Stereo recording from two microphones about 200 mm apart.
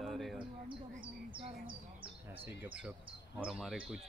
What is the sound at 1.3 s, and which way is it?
Bird, 25° right (ahead or behind).